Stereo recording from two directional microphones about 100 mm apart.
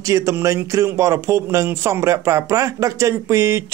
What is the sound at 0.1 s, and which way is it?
Speech, 30° right (ahead or behind).